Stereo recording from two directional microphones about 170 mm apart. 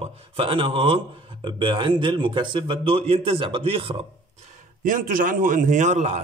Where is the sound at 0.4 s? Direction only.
30° right (ahead or behind).